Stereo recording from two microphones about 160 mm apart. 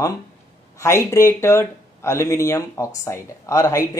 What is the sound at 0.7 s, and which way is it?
Speech, 20° left (ahead or behind).